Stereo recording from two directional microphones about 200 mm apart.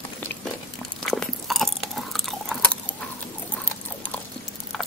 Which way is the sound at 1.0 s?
Centre (ahead or behind).